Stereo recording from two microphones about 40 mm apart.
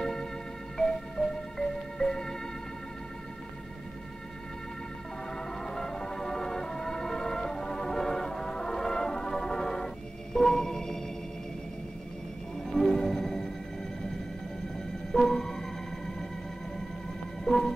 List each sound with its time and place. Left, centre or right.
0.0 s music: centre
5.6 s music: centre
12.5 s music: centre
15.1 s music: centre
17.5 s music: centre